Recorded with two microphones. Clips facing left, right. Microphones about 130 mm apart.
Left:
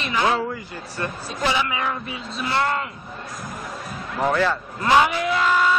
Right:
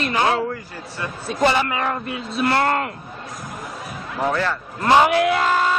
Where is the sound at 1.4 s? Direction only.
50° right (ahead or behind).